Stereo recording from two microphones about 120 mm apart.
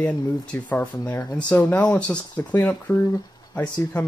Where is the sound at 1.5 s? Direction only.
10° left (ahead or behind).